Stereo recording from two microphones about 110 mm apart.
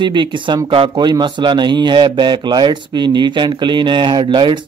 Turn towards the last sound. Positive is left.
turn(degrees=-45)  # may be behind; listen again after turning